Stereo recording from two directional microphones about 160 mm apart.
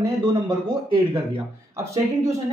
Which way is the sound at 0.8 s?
30° right (ahead or behind).